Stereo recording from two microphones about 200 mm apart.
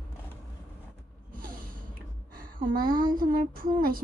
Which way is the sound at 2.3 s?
45° right (ahead or behind).